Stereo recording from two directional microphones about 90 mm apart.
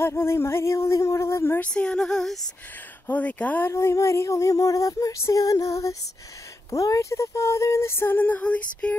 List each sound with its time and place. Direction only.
0.0 s a sound: 30° left (ahead or behind)
1.6 s speech: 10° left (ahead or behind)
3.1 s speech: 15° left (ahead or behind)
3.7 s female singing: 35° left (ahead or behind); by 8.9 s 15° left (ahead or behind)